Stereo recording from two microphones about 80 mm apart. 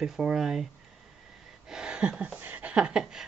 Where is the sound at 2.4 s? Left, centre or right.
Right.